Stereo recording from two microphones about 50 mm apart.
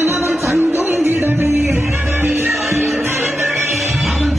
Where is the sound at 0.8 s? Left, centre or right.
Right.